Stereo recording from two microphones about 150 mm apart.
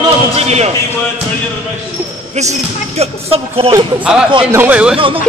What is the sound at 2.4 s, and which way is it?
Speech, 45° right (ahead or behind).